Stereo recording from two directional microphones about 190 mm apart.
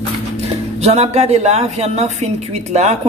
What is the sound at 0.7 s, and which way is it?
Speech, 35° right (ahead or behind).